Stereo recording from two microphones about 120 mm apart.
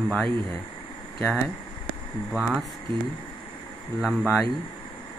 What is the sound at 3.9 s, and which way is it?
Speech, 5° right (ahead or behind).